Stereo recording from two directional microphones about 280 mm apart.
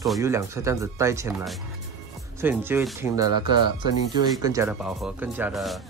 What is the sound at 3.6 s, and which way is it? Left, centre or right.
Speech, left.